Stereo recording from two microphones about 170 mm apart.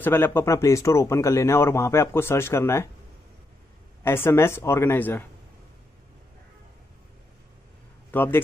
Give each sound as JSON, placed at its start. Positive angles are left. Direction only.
{"t": 0.0, "sound": "speech", "side_deg": 10}
{"t": 4.0, "sound": "speech", "side_deg": 15}
{"t": 8.1, "sound": "a man's voice", "side_deg": 10}